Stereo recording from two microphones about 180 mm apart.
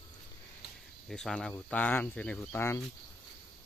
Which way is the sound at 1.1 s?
Centre (ahead or behind).